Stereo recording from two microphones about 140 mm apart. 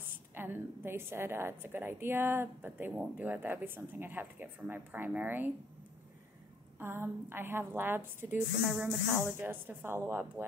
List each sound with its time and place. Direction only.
0.3 s speech: 15° right (ahead or behind)
6.8 s speech: 15° right (ahead or behind)
8.5 s speech: centre (ahead or behind)
9.1 s speech: 15° right (ahead or behind)